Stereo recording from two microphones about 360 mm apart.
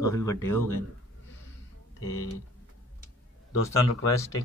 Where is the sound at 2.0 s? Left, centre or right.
Left.